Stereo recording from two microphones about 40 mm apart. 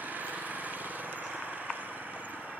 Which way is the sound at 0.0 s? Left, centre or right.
Right.